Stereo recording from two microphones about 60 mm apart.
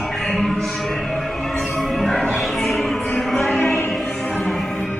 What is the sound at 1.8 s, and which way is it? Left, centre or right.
Music, centre.